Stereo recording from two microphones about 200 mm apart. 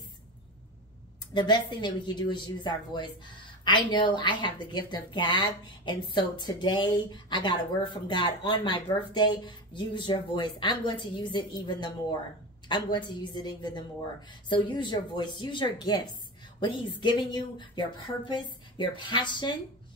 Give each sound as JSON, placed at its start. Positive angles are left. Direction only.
{"t": 1.3, "sound": "a woman's voice", "side_deg": 20}